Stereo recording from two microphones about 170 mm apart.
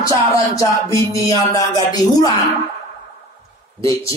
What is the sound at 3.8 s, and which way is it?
Speech, 20° left (ahead or behind).